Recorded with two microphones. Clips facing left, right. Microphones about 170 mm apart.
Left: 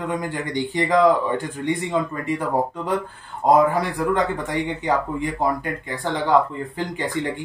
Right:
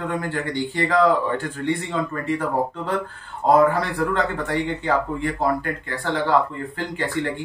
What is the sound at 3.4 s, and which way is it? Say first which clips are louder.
Speech: even; 15° left (ahead or behind).